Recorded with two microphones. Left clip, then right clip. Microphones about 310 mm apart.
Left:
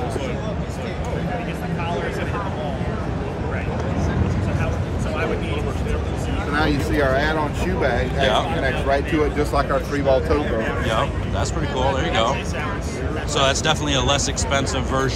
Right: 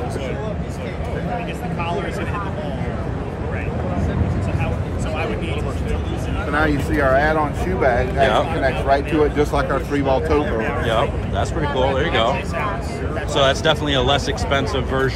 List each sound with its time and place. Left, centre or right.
6.5 s a sound: centre
8.2 s speech: centre
8.9 s speech: centre
10.6 s speech: centre
13.3 s speech: centre